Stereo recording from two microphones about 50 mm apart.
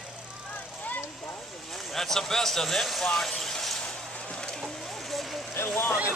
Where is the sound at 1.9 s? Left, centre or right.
Centre.